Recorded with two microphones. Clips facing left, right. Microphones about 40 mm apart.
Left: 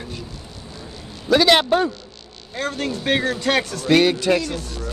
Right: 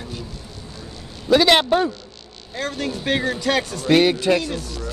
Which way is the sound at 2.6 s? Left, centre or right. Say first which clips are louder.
Left 1 dB; left.